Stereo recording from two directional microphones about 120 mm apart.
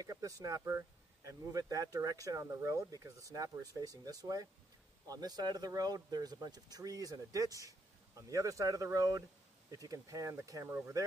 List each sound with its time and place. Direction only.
0.0 s speech: 30° right (ahead or behind)